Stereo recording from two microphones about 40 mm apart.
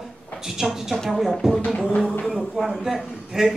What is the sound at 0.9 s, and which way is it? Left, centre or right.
Speech, centre.